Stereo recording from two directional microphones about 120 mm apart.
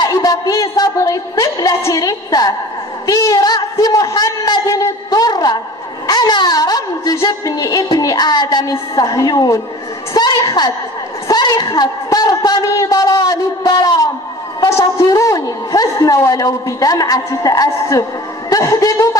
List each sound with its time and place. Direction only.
0.0 s a woman's voice: 30° left (ahead or behind)